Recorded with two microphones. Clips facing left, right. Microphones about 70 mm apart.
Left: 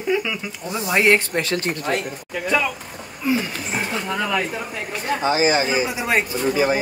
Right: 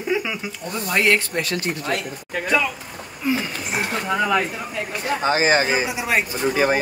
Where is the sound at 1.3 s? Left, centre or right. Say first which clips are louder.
Left 2 dB; left.